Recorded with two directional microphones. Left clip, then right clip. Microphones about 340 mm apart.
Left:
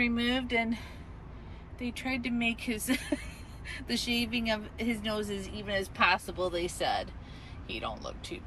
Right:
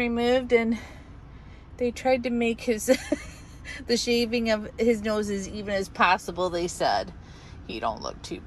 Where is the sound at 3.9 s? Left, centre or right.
Centre.